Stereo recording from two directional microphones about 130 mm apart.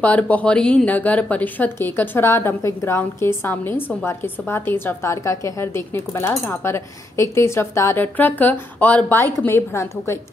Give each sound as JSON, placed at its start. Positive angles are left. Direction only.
{"t": 0.0, "sound": "a woman's voice", "side_deg": 10}